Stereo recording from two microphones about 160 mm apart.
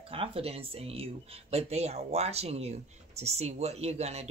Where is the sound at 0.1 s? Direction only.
35° right (ahead or behind).